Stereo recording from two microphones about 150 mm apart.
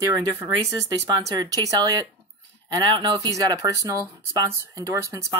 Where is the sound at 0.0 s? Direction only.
20° right (ahead or behind).